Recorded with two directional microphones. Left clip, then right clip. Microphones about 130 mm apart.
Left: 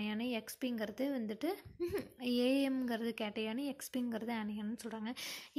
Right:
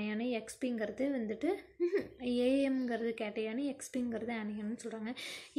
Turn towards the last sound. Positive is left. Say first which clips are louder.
# right 2 dB
turn(degrees=45)  # may be behind; listen again after turning